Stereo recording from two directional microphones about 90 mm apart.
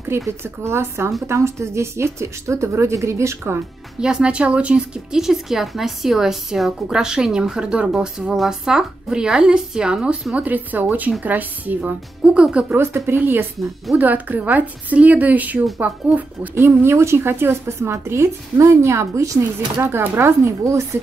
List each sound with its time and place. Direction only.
0.4 s a woman's voice: 30° right (ahead or behind)
4.0 s a woman's voice: 10° right (ahead or behind)
12.7 s a woman's voice: 25° right (ahead or behind)
16.5 s a woman's voice: 30° right (ahead or behind)